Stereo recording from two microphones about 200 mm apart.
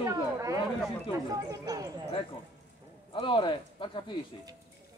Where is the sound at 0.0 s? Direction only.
15° right (ahead or behind).